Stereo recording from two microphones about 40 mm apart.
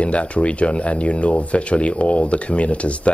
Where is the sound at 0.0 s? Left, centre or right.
Left.